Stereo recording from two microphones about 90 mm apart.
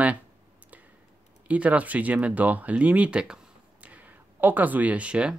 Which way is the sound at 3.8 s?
20° right (ahead or behind).